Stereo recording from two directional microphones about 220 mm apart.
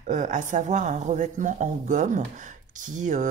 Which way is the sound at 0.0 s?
35° right (ahead or behind).